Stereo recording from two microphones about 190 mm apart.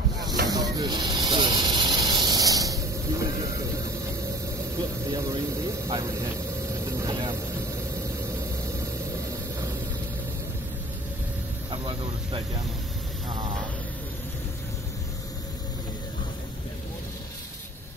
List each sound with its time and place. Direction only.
0.5 s snake: 20° right (ahead or behind)
5.0 s speech: 15° right (ahead or behind)
11.7 s vehicle: 25° right (ahead or behind)